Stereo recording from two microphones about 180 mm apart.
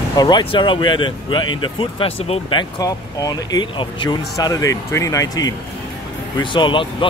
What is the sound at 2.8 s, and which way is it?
Speech, 20° left (ahead or behind).